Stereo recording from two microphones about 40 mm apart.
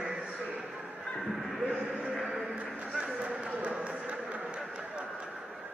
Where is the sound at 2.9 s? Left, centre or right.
Right.